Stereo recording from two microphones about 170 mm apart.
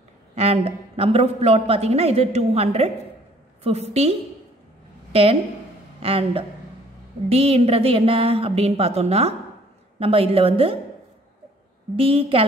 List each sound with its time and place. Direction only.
0.4 s a man's voice: 35° right (ahead or behind)
12.0 s a man's voice: 35° right (ahead or behind)